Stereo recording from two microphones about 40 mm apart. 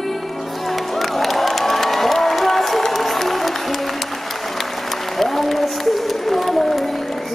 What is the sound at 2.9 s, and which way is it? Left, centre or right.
Music, centre.